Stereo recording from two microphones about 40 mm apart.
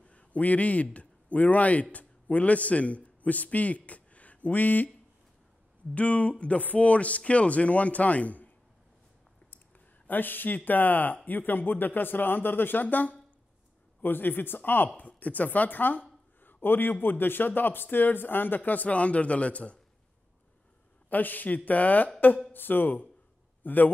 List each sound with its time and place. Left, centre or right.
0.0 s a sound: left
0.9 s a man's voice: left
5.9 s speech: left
10.0 s a man's voice: left
12.8 s speech: left
14.0 s a man's voice: left
15.1 s a man's voice: left
21.1 s speech: left
22.5 s a man's voice: left